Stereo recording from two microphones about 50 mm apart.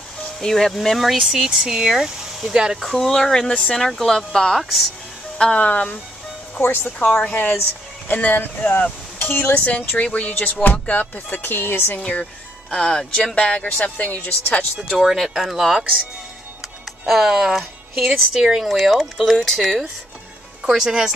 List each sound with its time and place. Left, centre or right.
0.4 s speech: centre
2.8 s speech: centre
4.6 s speech: centre
5.4 s speech: left
6.6 s music: left
10.0 s speech: left
10.3 s music: left
11.5 s speech: left
12.6 s speech: centre
13.3 s speech: left
14.8 s speech: centre
17.0 s speech: centre
18.7 s speech: centre
19.6 s speech: centre